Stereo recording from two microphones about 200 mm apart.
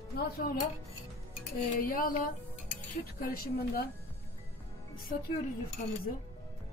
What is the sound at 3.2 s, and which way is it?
Speech, 50° left (ahead or behind).